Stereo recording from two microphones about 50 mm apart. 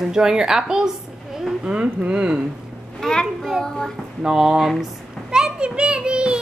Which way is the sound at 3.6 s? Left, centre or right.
Centre.